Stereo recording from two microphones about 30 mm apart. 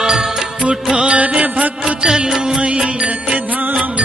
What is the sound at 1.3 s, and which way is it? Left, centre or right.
Mantra, right.